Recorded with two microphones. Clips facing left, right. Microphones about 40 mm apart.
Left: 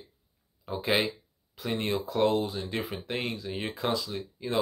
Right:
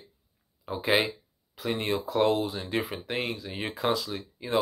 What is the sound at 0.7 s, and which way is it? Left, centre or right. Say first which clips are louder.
Speech: right 2 dB; centre.